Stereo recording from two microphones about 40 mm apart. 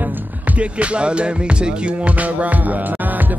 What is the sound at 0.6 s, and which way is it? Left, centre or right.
Music, right.